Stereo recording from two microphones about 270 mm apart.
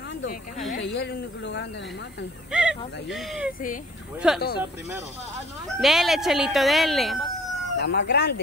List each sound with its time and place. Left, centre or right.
0.2 s speech: left
2.5 s speech: centre
5.8 s speech: centre
7.8 s speech: left